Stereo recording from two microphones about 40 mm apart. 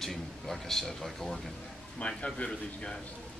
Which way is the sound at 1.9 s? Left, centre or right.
Left.